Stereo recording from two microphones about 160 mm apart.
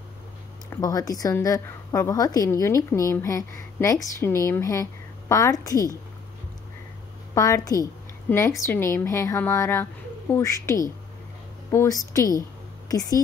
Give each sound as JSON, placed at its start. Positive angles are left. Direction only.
{"t": 0.7, "sound": "a woman's voice", "side_deg": 20}
{"t": 7.3, "sound": "a woman's voice", "side_deg": 20}